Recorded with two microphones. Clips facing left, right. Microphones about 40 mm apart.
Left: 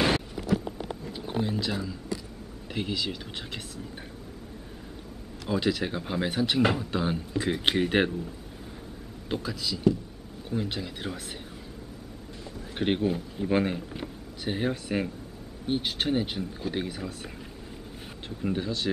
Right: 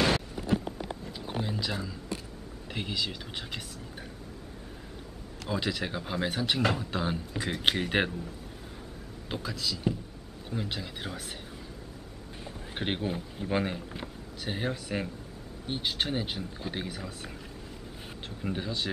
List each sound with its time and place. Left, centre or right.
0.4 s a sound: centre
0.7 s a sound: centre
1.4 s speech: centre
5.5 s speech: centre
9.3 s speech: centre
12.7 s speech: centre
18.4 s speech: centre